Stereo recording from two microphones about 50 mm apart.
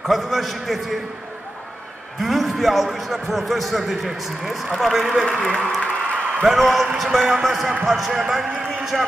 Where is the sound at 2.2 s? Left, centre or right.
Centre.